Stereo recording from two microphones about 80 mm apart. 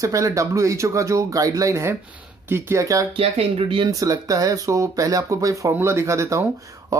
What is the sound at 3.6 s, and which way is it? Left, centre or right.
Speech, right.